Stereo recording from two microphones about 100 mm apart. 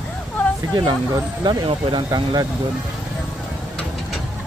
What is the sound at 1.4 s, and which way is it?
Speech, 50° right (ahead or behind).